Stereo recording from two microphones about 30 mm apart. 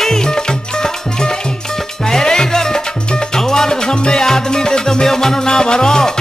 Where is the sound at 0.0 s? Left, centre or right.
Left.